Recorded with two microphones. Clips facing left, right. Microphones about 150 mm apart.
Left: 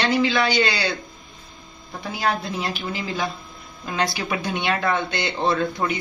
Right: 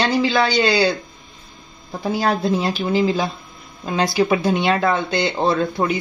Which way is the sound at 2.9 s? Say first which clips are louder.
Right 8 dB; 30° right (ahead or behind).